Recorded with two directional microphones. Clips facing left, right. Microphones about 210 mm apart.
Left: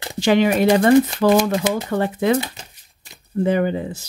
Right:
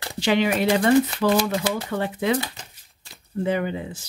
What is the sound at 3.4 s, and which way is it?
Speech, 45° left (ahead or behind).